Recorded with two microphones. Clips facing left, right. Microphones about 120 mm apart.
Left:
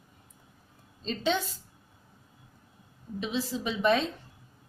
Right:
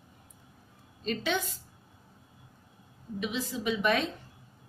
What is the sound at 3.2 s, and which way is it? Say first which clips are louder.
Speech: left 2 dB; 30° left (ahead or behind).